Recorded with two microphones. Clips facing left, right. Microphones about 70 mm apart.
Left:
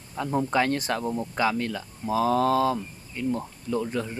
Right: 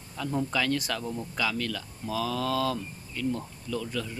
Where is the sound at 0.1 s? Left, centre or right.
Left.